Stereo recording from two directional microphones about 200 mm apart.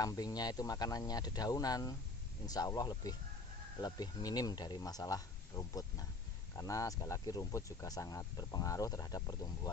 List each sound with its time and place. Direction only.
0.0 s speech: 20° left (ahead or behind)